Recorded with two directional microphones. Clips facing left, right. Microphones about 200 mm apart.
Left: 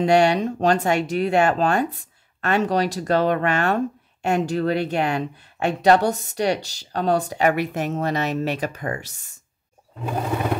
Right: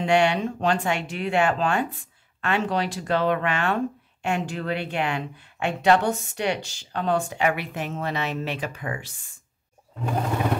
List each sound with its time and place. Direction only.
0.0 s speech: 40° left (ahead or behind)